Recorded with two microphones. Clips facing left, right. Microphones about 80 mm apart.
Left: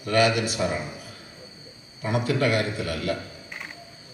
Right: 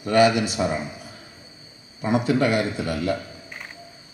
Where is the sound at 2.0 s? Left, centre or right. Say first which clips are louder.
Right 3 dB; right.